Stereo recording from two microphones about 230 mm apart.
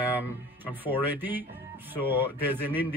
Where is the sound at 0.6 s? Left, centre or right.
Centre.